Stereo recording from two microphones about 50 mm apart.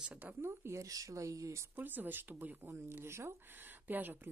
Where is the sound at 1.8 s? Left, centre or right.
Right.